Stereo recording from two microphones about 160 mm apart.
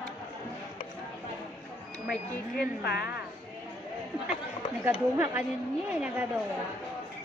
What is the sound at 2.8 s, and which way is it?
Speech, 90° left.